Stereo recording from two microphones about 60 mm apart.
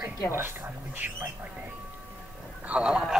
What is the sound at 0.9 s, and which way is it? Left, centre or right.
Speech, right.